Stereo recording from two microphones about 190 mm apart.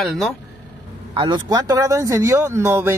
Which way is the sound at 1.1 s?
25° right (ahead or behind).